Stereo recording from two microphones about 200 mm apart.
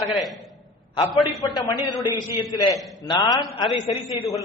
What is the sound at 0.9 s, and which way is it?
A man's voice, 25° left (ahead or behind).